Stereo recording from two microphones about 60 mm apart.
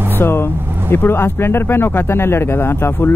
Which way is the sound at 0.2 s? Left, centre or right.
Left.